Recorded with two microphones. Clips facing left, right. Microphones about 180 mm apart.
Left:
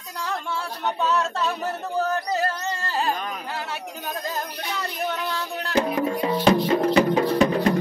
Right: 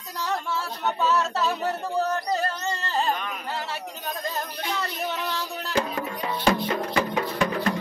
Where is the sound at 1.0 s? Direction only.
5° right (ahead or behind).